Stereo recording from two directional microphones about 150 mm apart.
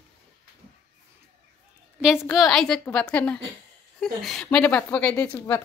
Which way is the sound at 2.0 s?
5° right (ahead or behind).